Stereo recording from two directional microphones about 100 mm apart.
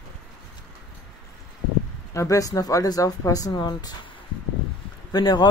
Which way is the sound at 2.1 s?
35° left (ahead or behind).